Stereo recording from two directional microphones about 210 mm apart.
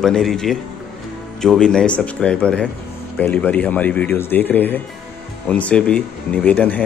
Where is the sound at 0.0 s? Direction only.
Centre (ahead or behind).